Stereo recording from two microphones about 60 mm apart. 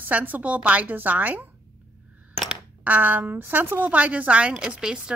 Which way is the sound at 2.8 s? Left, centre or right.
Right.